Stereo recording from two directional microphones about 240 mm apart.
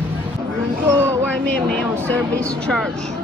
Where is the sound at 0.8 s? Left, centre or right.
Centre.